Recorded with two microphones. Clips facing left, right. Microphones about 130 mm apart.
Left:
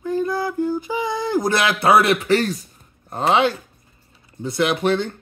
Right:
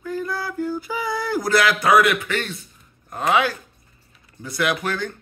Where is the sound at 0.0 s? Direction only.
20° left (ahead or behind); by 2.6 s 35° left (ahead or behind).